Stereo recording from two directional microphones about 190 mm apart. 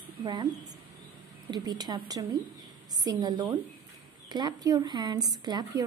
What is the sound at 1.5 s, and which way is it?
Speech, 20° right (ahead or behind).